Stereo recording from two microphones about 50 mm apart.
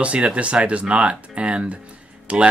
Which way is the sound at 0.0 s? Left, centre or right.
Right.